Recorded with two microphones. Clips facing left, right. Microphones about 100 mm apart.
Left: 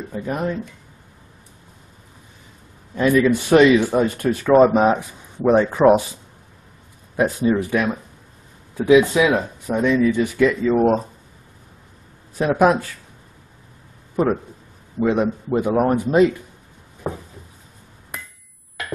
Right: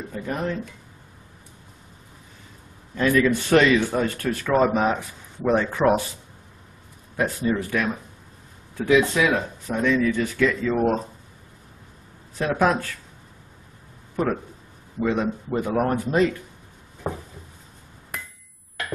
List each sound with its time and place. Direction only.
0.1 s speech: 15° left (ahead or behind)
2.9 s speech: 15° left (ahead or behind)
7.2 s speech: 20° left (ahead or behind)
12.4 s speech: 15° left (ahead or behind)
14.1 s speech: 15° left (ahead or behind)
17.0 s a sound: 5° left (ahead or behind)